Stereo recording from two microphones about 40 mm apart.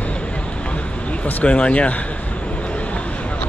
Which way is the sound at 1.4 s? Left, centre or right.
Left.